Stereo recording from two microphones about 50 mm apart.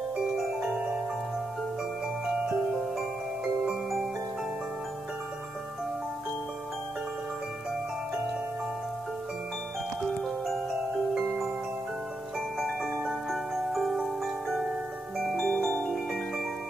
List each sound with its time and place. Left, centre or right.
0.6 s music: centre
2.4 s music: centre
10.0 s glockenspiel: centre
12.5 s music: centre
15.3 s harp: centre
15.9 s music: centre